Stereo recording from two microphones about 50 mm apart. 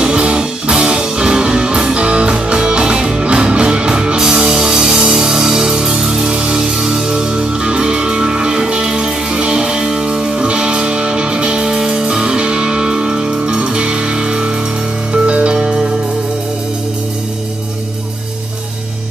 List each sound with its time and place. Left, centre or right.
0.0 s music: centre